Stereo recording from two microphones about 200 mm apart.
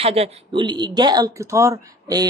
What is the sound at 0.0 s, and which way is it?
Speech, 30° right (ahead or behind).